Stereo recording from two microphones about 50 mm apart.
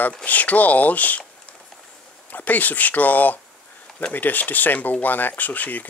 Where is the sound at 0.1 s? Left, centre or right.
Left.